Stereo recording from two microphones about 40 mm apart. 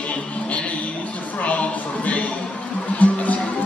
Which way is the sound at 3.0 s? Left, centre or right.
Left.